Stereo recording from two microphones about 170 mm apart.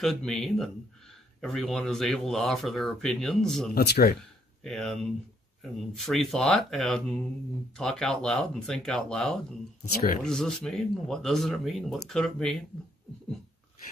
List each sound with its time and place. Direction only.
0.0 s speech: centre (ahead or behind)
3.7 s speech: 65° left (ahead or behind)
4.6 s speech: 5° left (ahead or behind)